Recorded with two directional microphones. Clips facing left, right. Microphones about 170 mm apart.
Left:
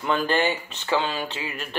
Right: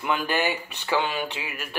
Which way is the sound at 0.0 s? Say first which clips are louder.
Left 3 dB; 10° right (ahead or behind).